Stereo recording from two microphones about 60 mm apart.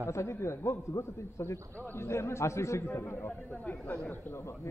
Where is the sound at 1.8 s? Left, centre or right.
Left.